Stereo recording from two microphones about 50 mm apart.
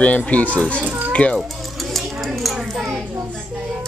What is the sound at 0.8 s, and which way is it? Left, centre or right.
Speech, right.